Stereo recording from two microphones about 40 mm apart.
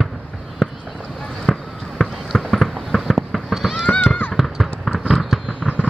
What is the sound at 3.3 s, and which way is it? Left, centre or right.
Fireworks, centre.